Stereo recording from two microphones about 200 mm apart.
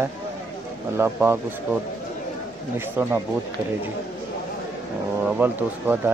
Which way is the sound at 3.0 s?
10° right (ahead or behind).